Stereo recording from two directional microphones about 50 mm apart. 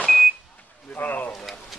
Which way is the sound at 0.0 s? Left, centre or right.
Centre.